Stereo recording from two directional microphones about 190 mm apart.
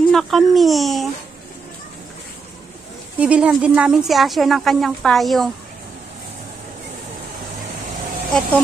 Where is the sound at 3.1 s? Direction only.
5° right (ahead or behind).